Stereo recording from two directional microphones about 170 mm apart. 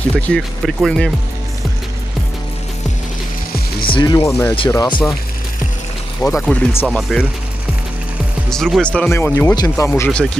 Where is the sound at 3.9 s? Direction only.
30° left (ahead or behind).